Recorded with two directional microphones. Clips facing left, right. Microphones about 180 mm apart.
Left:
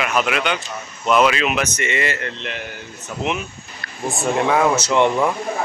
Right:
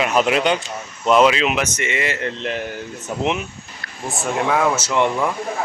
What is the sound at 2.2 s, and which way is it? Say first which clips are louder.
Speech: right 5 dB; 40° right (ahead or behind).